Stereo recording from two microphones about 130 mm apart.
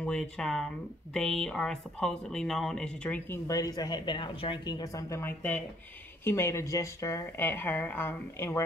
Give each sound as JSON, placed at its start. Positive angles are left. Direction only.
{"t": 0.0, "sound": "speech", "side_deg": 5}
{"t": 3.4, "sound": "speech", "side_deg": 25}
{"t": 5.2, "sound": "speech", "side_deg": 10}